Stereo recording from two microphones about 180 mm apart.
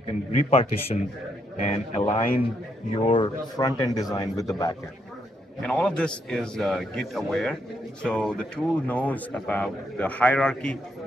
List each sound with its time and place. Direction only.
0.4 s a man's voice: 35° left (ahead or behind); by 4.7 s 20° left (ahead or behind)
5.6 s a man's voice: 5° left (ahead or behind)